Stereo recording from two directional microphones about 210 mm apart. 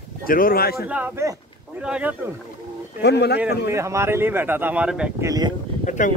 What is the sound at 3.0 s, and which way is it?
Speech, 55° left (ahead or behind).